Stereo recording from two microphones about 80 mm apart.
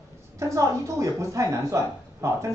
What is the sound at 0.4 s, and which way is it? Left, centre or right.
A man's voice, right.